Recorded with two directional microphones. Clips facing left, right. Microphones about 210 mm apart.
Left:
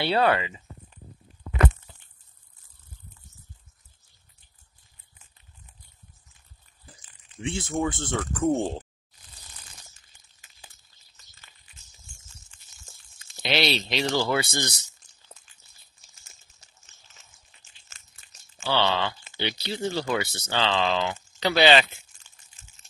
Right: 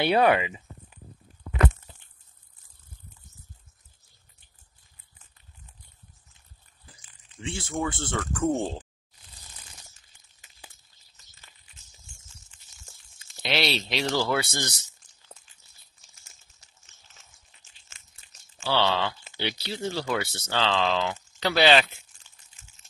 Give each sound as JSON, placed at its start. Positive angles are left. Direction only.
{"t": 0.0, "sound": "speech", "side_deg": -15}
{"t": 7.4, "sound": "speech", "side_deg": 20}
{"t": 13.4, "sound": "speech", "side_deg": 0}
{"t": 18.6, "sound": "speech", "side_deg": 0}